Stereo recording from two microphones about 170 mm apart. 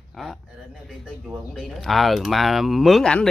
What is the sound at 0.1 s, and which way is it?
Speech, centre (ahead or behind).